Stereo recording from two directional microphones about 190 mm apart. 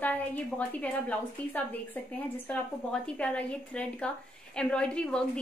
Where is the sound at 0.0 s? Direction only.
10° left (ahead or behind).